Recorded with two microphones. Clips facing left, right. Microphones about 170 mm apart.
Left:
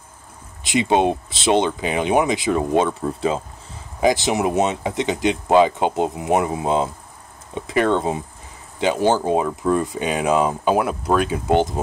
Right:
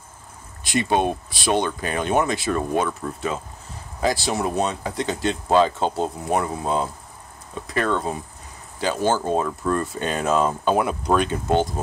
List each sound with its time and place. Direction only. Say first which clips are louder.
0.7 s speech: left 3 dB; 20° left (ahead or behind)
4.0 s speech: left 4 dB; 20° left (ahead or behind)
11.5 s speech: left 3 dB; 20° left (ahead or behind)